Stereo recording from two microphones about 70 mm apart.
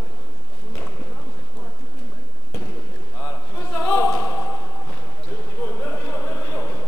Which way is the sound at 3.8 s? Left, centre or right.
Left.